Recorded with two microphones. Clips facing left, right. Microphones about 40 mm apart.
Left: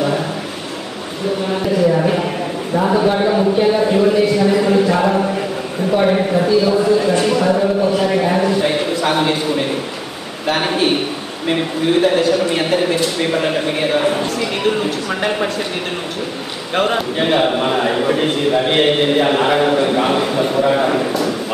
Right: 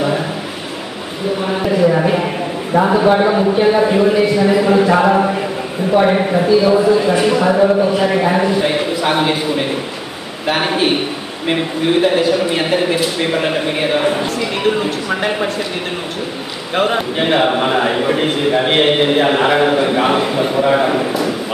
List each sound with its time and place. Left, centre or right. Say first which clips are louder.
1.5 s a man's voice: right 2 dB; centre
10.4 s a man's voice: right 1 dB; centre
16.7 s a man's voice: right 1 dB; centre